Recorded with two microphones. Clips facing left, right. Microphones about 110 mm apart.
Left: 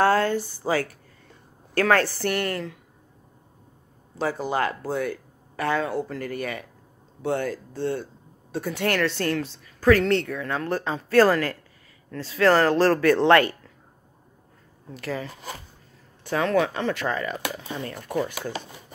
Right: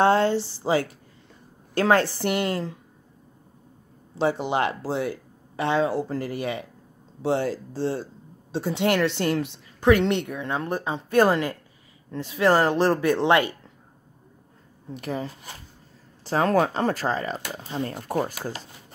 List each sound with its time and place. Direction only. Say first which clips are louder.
0.0 s speech: right 1 dB; 25° right (ahead or behind)
4.2 s speech: right 2 dB; 25° right (ahead or behind)
15.0 s speech: right 1 dB; 20° right (ahead or behind)
16.3 s speech: right 1 dB; 35° right (ahead or behind)